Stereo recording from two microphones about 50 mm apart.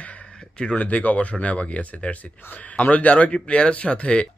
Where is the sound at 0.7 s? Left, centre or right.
Left.